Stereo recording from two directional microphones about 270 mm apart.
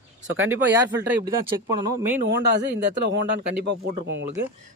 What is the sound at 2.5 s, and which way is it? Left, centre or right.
A man's voice, right.